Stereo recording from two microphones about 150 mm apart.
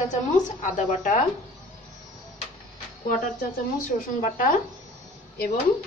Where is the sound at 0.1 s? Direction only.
60° left (ahead or behind).